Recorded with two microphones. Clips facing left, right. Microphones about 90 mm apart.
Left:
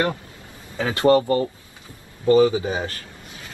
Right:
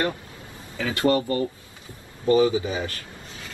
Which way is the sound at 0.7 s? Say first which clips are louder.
Left 5 dB; 30° left (ahead or behind).